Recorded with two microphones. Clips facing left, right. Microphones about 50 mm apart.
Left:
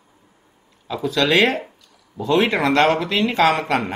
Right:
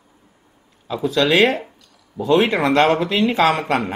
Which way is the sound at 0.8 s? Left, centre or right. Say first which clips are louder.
Right 2 dB; centre.